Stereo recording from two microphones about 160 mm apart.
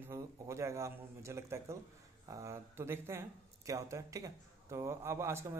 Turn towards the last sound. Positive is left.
turn(degrees=-15)  # may be behind; listen again after turning